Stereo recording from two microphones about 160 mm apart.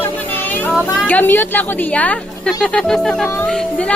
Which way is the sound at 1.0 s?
10° left (ahead or behind).